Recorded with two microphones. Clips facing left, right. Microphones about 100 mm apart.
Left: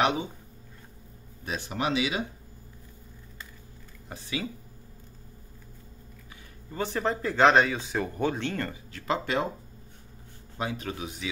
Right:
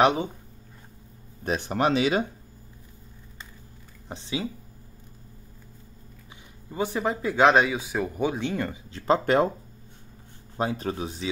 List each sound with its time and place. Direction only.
1.4 s speech: 45° right (ahead or behind)
4.1 s speech: 25° right (ahead or behind)
6.7 s speech: 15° right (ahead or behind)
8.9 s speech: 35° right (ahead or behind)
9.2 s speech: 50° right (ahead or behind)
10.6 s speech: 35° right (ahead or behind)